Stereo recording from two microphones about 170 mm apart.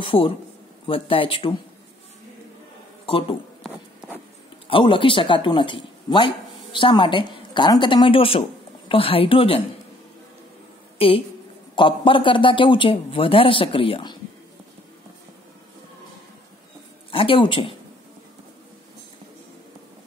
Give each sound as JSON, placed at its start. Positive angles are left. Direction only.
{"t": 0.0, "sound": "a man's voice", "side_deg": 30}
{"t": 3.1, "sound": "speech", "side_deg": 30}
{"t": 4.6, "sound": "speech", "side_deg": 30}
{"t": 11.0, "sound": "a woman's voice", "side_deg": 35}
{"t": 17.1, "sound": "a man's voice", "side_deg": 30}